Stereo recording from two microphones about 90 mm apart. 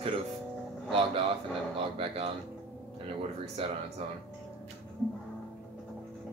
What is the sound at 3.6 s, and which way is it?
Speech, 90° right.